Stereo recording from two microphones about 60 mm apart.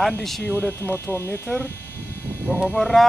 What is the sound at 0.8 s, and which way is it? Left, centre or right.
Speech, left.